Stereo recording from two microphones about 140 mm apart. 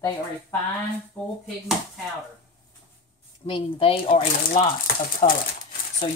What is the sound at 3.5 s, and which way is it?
Speech, 40° left (ahead or behind).